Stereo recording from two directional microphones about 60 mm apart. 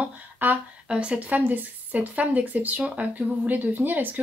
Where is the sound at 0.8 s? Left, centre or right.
Centre.